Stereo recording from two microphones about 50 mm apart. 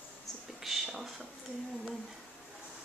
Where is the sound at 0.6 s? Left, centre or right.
Centre.